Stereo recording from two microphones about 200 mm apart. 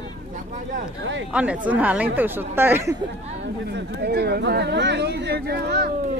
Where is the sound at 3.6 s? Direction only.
55° right (ahead or behind).